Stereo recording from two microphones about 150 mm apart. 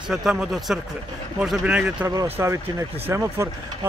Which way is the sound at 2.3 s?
20° right (ahead or behind).